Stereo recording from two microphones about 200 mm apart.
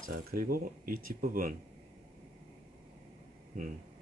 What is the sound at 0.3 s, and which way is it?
Speech, 45° right (ahead or behind).